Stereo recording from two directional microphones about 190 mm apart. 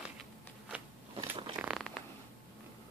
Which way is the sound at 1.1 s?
30° right (ahead or behind).